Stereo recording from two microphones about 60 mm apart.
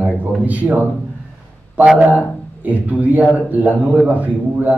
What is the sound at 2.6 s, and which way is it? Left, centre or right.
Speech, right.